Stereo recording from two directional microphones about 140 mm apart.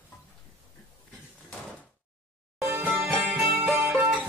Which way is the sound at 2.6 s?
20° right (ahead or behind).